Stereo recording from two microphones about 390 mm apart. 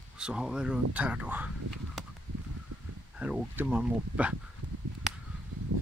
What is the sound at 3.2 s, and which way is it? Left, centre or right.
Speech, centre.